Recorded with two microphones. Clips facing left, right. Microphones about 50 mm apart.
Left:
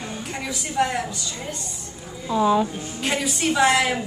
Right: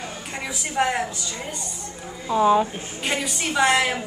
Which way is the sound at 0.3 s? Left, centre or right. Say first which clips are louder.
Left 1 dB; centre.